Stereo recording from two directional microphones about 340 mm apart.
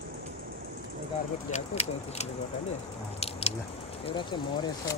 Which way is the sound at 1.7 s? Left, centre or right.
Centre.